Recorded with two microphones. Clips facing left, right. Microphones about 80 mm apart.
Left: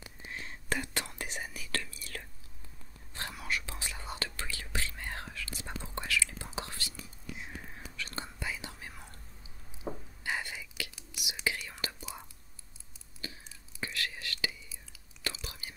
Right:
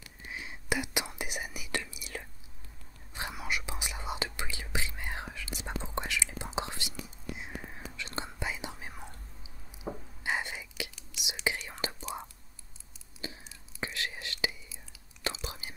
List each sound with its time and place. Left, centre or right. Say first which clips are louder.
0.3 s whispering: right 2 dB; centre
9.9 s a sound: even; centre
10.2 s whispering: right 3 dB; right
11.0 s whispering: right 1 dB; left
11.4 s whispering: right 2 dB; right